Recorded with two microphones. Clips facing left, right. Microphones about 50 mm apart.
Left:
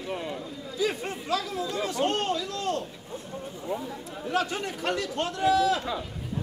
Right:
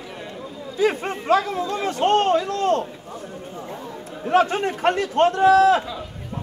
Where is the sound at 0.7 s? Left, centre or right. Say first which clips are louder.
Right 8 dB; right.